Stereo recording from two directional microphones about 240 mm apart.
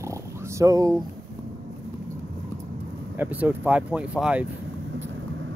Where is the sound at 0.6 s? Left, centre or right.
Centre.